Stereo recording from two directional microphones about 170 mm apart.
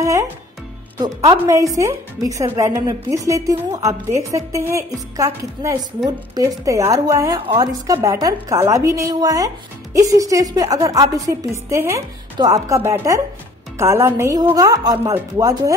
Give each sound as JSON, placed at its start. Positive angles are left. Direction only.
{"t": 0.0, "sound": "music", "side_deg": -20}
{"t": 0.9, "sound": "a woman's voice", "side_deg": -20}